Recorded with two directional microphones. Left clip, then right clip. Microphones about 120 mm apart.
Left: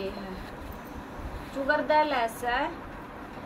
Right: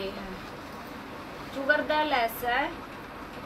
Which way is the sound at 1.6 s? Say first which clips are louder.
Left 1 dB; 15° left (ahead or behind).